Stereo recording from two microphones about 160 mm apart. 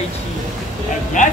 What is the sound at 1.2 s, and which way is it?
Speech, 50° left (ahead or behind).